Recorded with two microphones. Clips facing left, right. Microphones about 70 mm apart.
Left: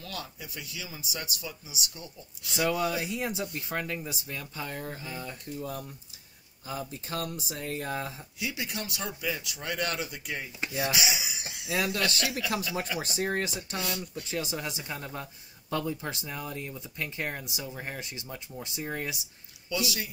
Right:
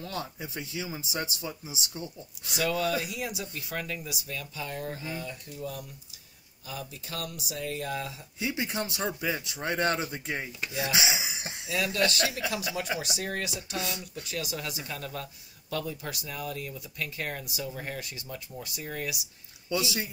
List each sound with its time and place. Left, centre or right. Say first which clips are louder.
0.0 s speech: right 4 dB; right
2.5 s speech: even; left
8.4 s speech: right 4 dB; right
10.6 s speech: left 5 dB; left
10.9 s speech: right 1 dB; right
11.7 s speech: left 1 dB; left
12.2 s speech: right 2 dB; right
13.0 s speech: left 3 dB; left
19.7 s speech: right 2 dB; right